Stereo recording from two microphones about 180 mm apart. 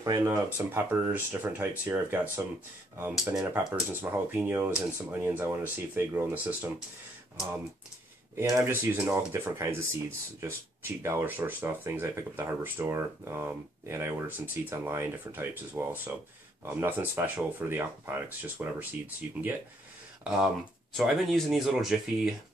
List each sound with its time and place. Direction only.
0.0 s speech: 20° right (ahead or behind)
8.4 s speech: 15° right (ahead or behind)